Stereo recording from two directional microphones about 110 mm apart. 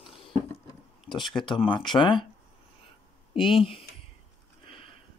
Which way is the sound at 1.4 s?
50° left (ahead or behind).